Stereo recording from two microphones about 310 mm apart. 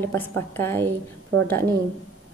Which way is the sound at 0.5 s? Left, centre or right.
Centre.